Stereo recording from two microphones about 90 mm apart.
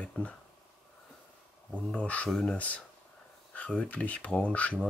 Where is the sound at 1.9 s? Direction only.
10° left (ahead or behind).